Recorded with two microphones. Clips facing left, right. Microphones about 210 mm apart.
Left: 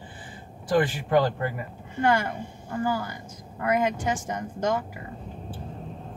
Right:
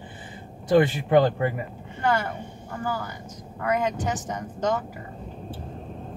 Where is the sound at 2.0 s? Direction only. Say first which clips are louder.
Left 1 dB; 10° left (ahead or behind).